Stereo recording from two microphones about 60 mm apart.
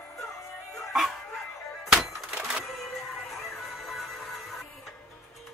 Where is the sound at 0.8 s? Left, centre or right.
Centre.